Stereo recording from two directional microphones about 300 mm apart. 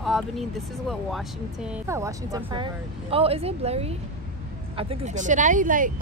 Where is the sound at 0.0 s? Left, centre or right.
Centre.